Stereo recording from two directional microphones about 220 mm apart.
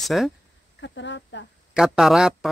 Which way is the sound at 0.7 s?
55° left (ahead or behind).